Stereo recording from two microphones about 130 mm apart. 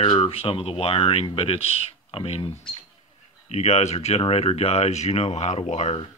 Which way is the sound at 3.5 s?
55° left (ahead or behind).